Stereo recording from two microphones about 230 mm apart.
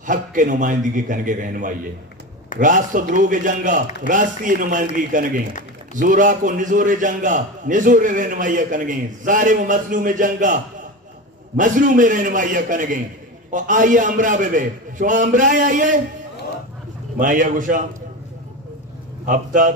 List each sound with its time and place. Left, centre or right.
0.0 s a man's voice: right
17.2 s a man's voice: right
19.2 s a man's voice: right